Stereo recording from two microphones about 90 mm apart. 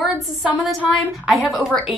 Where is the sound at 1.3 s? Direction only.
Centre (ahead or behind).